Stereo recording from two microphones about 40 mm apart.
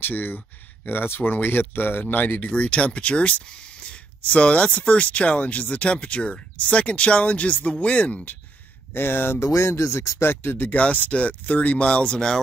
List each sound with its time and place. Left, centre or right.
0.0 s speech: left
0.8 s speech: left
1.3 s speech: left
2.4 s speech: left
8.9 s speech: left
10.7 s speech: left
11.1 s speech: left
12.1 s speech: centre